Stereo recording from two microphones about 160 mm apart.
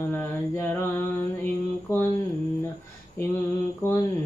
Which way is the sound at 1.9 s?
20° left (ahead or behind).